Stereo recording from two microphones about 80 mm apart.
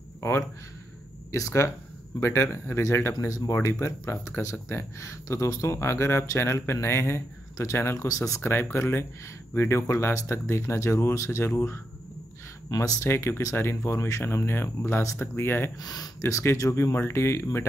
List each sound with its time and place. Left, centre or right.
0.2 s a man's voice: left
12.6 s speech: left
15.8 s speech: left